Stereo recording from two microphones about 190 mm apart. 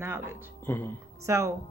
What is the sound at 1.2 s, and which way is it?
Speech, 15° right (ahead or behind).